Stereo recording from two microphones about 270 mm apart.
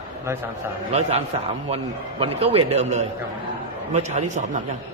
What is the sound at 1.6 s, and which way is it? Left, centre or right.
A man's voice, right.